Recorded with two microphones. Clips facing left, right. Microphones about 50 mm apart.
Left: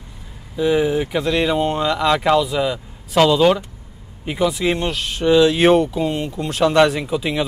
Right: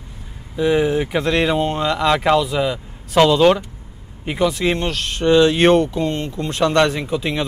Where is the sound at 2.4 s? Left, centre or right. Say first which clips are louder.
Even; centre.